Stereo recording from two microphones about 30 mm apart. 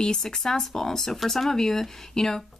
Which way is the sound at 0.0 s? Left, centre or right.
Left.